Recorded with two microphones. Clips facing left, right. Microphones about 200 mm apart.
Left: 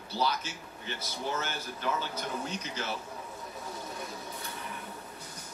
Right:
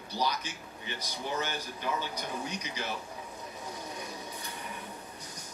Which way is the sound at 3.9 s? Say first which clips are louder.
Left 1 dB; 15° right (ahead or behind).